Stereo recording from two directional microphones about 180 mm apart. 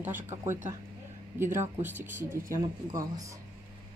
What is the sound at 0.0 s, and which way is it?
Speech, 10° right (ahead or behind).